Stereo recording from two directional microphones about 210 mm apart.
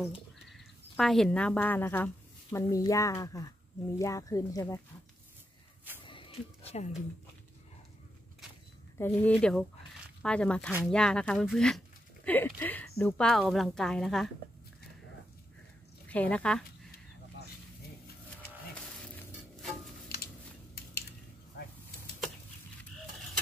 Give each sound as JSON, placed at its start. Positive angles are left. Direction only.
{"t": 0.0, "sound": "speech", "side_deg": 0}
{"t": 6.0, "sound": "a sound", "side_deg": 25}
{"t": 8.9, "sound": "speech", "side_deg": 10}
{"t": 16.1, "sound": "speech", "side_deg": 5}